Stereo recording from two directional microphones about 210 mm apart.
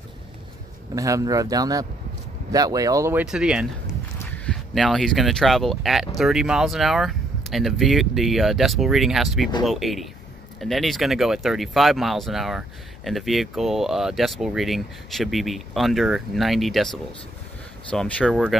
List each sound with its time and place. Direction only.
0.9 s speech: 15° right (ahead or behind)